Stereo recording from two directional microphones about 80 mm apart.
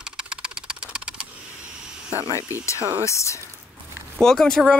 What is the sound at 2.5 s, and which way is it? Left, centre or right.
Speech, left.